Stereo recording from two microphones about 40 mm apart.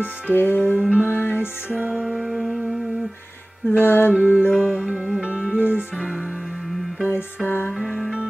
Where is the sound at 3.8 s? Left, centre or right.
Left.